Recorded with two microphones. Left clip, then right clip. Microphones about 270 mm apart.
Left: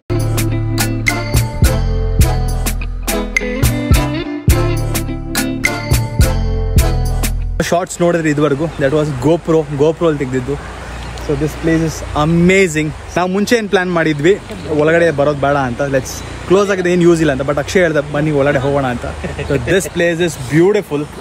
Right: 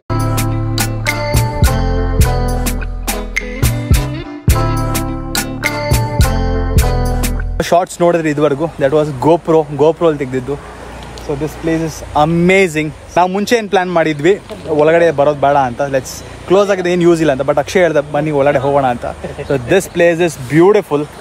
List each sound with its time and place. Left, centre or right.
0.1 s music: centre
7.5 s speech: centre